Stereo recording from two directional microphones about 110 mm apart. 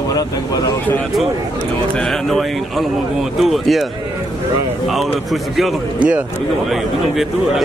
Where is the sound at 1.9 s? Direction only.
5° left (ahead or behind).